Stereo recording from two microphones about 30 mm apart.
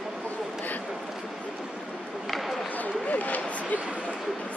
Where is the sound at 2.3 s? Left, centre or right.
Centre.